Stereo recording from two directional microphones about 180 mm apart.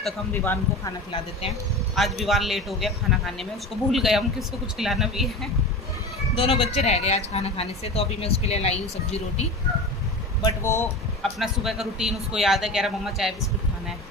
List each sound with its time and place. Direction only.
0.0 s speech: 10° left (ahead or behind)
2.0 s speech: centre (ahead or behind)
6.3 s speech: 30° left (ahead or behind)
10.4 s speech: 15° left (ahead or behind)
11.3 s speech: centre (ahead or behind)